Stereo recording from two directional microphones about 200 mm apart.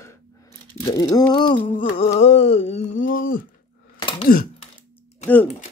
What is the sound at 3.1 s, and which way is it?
Speech, 45° left (ahead or behind).